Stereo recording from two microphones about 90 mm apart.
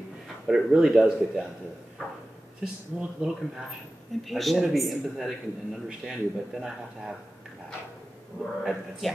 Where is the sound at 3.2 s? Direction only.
10° right (ahead or behind).